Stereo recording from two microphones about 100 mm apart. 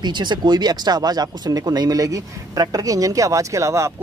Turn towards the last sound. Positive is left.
turn(degrees=-30)  # may be behind; listen again after turning